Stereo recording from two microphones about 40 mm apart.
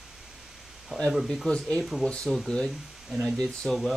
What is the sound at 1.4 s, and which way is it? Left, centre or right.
Speech, centre.